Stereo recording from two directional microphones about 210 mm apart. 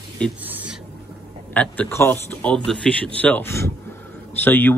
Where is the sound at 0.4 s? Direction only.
10° right (ahead or behind).